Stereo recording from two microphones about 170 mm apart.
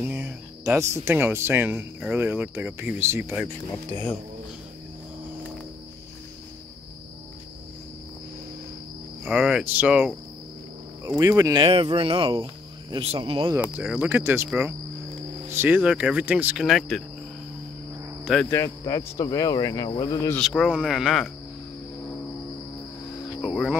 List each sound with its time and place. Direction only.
0.0 s speech: 15° right (ahead or behind)
3.9 s speech: 10° left (ahead or behind)
9.2 s speech: 5° right (ahead or behind)
11.1 s speech: 20° right (ahead or behind)
11.6 s speech: 30° right (ahead or behind)
13.7 s speech: 10° right (ahead or behind)
18.2 s speech: centre (ahead or behind)
18.5 s cricket: 15° left (ahead or behind)
20.3 s speech: centre (ahead or behind)
23.4 s a sound: centre (ahead or behind)